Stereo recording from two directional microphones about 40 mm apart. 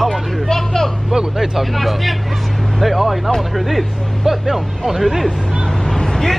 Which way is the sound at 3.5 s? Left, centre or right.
Centre.